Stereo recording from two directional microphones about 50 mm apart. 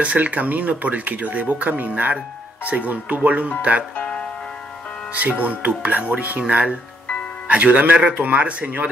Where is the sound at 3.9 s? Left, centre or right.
Left.